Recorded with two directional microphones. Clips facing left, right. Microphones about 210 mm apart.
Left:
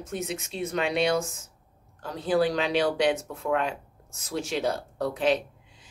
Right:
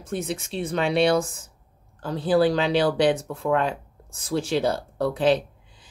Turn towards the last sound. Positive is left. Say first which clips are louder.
# right 2 dB
turn(degrees=-35)  # may be behind; listen again after turning